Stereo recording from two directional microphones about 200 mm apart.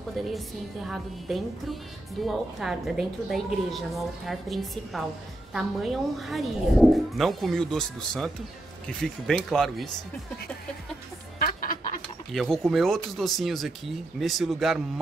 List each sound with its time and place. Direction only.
0.8 s speech: centre (ahead or behind)
11.3 s a sound: 45° left (ahead or behind)
12.3 s speech: centre (ahead or behind)